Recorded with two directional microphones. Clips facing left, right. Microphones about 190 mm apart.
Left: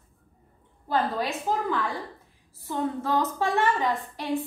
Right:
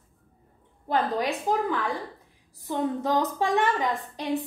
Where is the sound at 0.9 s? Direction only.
15° right (ahead or behind).